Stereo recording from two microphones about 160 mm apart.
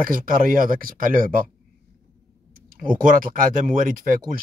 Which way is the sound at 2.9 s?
60° right (ahead or behind).